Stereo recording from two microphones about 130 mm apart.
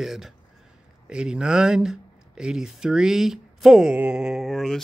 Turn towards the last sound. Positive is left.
turn(degrees=0)  # may be behind; listen again after turning